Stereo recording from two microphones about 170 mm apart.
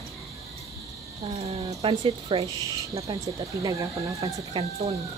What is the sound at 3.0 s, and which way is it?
Speech, 20° right (ahead or behind).